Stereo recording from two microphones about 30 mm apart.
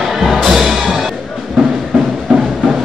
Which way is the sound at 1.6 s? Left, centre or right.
Right.